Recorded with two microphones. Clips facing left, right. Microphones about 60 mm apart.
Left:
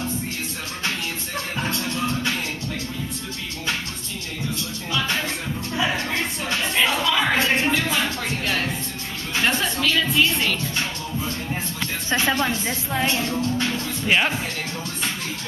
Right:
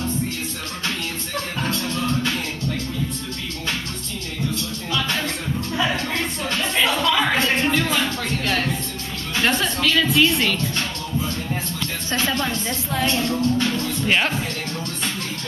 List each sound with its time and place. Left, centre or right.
0.8 s music: centre
4.9 s music: centre
12.4 s speech: centre